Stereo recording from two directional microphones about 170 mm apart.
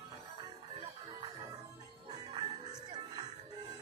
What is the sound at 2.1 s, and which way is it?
Music, 25° right (ahead or behind).